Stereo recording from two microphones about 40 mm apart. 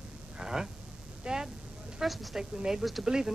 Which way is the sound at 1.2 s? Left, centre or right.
Right.